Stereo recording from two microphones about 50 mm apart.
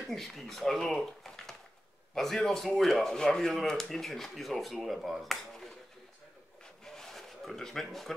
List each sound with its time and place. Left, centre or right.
0.1 s speech: centre
1.2 s a sound: centre
2.1 s speech: centre
6.6 s zipper: centre